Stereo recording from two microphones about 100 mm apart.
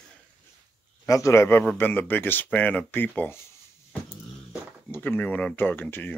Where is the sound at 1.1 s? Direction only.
30° left (ahead or behind).